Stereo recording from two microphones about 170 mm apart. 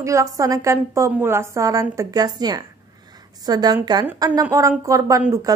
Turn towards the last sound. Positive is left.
turn(degrees=-20)  # may be behind; listen again after turning